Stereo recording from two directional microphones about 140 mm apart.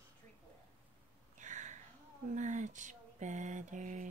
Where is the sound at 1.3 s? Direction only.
60° right (ahead or behind).